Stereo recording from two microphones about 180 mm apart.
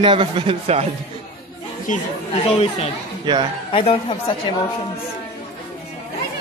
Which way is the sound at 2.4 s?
35° left (ahead or behind).